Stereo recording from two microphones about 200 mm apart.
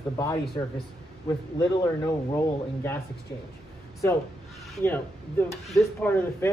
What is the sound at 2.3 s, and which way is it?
Speech, 10° left (ahead or behind).